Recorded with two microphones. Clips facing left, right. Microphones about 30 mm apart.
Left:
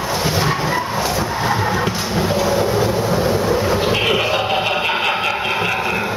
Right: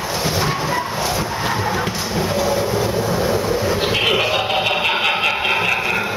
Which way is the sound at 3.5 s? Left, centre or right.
Centre.